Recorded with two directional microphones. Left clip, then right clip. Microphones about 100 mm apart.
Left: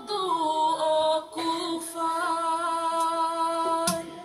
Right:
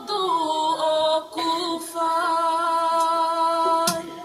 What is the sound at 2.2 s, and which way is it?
Music, 30° left (ahead or behind).